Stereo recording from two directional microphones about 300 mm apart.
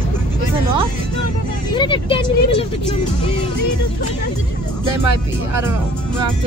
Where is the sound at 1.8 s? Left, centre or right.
Centre.